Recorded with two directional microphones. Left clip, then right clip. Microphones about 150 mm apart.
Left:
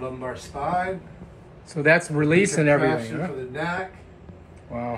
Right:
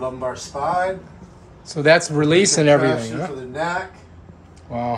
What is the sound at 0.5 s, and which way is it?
Speech, 40° right (ahead or behind).